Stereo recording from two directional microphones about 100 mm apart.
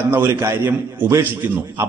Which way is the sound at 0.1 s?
25° right (ahead or behind).